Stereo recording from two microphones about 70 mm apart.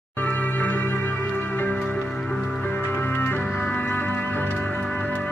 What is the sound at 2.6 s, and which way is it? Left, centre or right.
Music, left.